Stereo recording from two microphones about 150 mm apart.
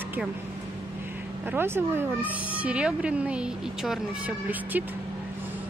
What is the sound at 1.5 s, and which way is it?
Speech, 15° right (ahead or behind).